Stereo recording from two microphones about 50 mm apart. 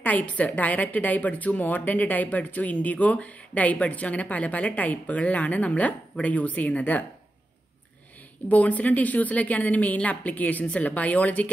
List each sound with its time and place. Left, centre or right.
0.0 s a woman's voice: left
8.5 s a woman's voice: left